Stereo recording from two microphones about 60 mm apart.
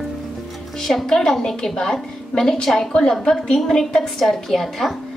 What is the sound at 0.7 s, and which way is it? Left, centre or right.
A woman's voice, centre.